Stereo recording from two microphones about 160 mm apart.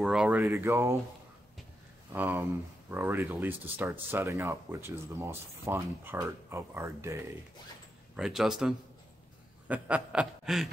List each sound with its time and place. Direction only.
0.0 s speech: 5° right (ahead or behind)
0.4 s speech: 15° right (ahead or behind)
2.1 s speech: 15° right (ahead or behind)
8.2 s speech: 5° right (ahead or behind)